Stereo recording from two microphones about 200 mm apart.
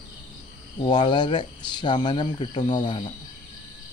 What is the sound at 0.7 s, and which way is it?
Speech, 20° left (ahead or behind).